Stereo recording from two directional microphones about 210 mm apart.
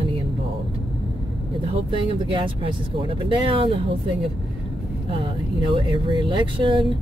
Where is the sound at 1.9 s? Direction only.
25° right (ahead or behind).